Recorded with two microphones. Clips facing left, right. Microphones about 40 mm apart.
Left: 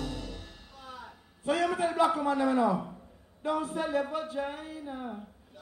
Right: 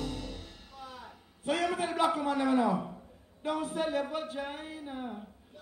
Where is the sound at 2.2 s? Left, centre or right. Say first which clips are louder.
Left 1 dB; right.